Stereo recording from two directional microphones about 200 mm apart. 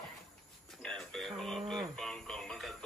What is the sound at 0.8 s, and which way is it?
Music, 5° left (ahead or behind).